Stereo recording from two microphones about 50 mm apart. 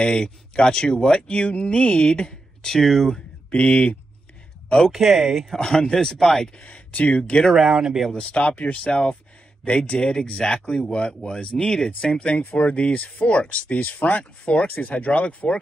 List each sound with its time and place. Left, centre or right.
0.0 s speech: centre
4.6 s speech: centre
4.9 s speech: centre
6.6 s speech: left
7.7 s speech: centre
8.3 s speech: left